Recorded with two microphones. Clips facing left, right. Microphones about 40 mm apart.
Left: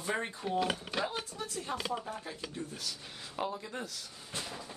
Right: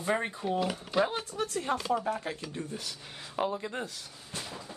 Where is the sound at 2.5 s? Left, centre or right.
Right.